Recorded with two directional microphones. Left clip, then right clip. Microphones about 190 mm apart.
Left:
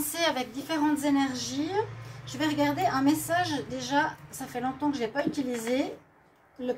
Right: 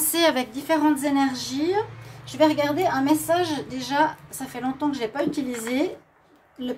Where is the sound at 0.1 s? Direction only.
55° right (ahead or behind).